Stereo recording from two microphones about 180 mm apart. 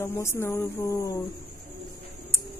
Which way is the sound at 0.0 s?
15° left (ahead or behind).